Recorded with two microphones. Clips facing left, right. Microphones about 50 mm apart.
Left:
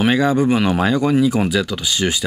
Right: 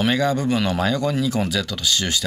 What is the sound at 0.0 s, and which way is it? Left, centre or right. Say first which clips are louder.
Speech: left 4 dB; centre.